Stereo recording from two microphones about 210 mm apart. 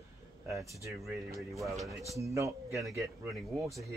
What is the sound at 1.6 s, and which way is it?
Speech, centre (ahead or behind).